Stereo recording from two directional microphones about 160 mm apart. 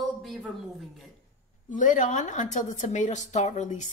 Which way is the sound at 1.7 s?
55° left (ahead or behind).